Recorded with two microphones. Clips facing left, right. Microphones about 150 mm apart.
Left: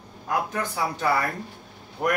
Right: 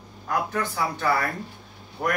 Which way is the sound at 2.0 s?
15° left (ahead or behind).